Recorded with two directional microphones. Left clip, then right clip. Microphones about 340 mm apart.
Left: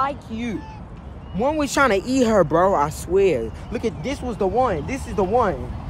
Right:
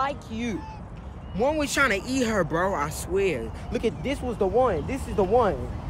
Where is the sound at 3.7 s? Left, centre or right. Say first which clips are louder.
Right 1 dB; left.